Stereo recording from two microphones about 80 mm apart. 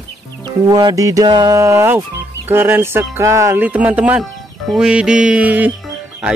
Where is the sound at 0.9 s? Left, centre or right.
Right.